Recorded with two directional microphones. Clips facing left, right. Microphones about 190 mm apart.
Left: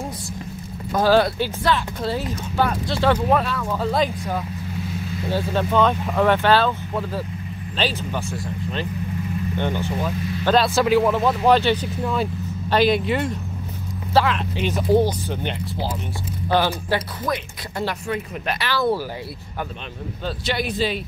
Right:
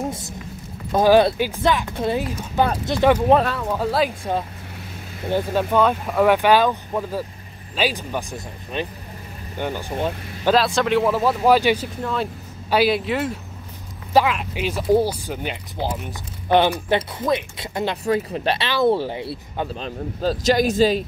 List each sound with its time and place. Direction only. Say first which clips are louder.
0.9 s speech: right 3 dB; 20° right (ahead or behind)
3.7 s speech: even; 10° right (ahead or behind)
5.3 s speech: right 2 dB; 10° right (ahead or behind)
10.5 s speech: left 1 dB; centre (ahead or behind)
12.0 s speech: left 1 dB; 5° left (ahead or behind)
12.6 s speech: even; 5° right (ahead or behind)
16.4 s speech: right 3 dB; 20° right (ahead or behind)
18.0 s speech: right 5 dB; 35° right (ahead or behind)
20.2 s a man's voice: right 7 dB; 40° right (ahead or behind)